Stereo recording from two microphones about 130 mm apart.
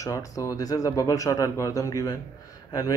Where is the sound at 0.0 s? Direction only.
25° left (ahead or behind).